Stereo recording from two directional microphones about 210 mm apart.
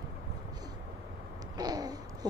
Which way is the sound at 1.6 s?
20° right (ahead or behind).